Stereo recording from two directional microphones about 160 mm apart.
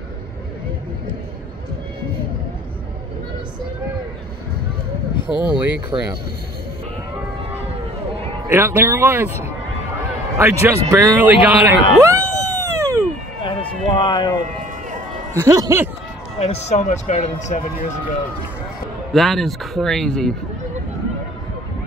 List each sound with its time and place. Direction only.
5.2 s speech: 30° left (ahead or behind)
5.9 s speech: 30° right (ahead or behind)
8.5 s a man's voice: 15° right (ahead or behind)
12.0 s a sound: 20° right (ahead or behind)
13.4 s run: 30° left (ahead or behind)
15.3 s speech: 20° right (ahead or behind)
16.3 s speech: 45° left (ahead or behind)
19.1 s speech: centre (ahead or behind)